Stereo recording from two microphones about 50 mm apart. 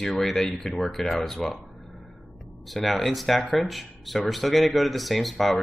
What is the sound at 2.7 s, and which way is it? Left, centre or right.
Speech, centre.